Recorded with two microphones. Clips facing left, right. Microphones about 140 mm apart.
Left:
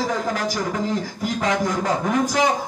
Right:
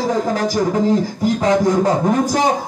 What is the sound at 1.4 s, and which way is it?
Music, 35° right (ahead or behind).